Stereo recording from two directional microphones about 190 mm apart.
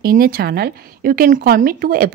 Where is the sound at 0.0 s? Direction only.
50° right (ahead or behind).